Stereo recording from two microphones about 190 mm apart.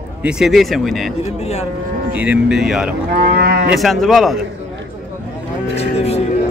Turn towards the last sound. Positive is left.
turn(degrees=35)  # may be behind; listen again after turning